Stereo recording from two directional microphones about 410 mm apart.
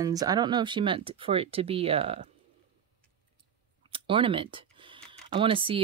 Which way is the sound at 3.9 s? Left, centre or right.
Centre.